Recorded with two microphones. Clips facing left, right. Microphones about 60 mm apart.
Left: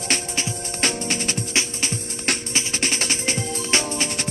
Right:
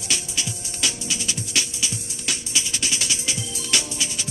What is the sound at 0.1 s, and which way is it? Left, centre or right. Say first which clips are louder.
Music: left 3 dB; left.